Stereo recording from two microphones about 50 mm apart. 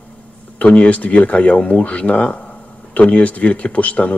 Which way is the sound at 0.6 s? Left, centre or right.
Left.